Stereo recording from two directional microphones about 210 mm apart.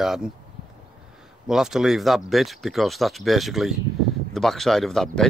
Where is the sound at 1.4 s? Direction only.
Centre (ahead or behind).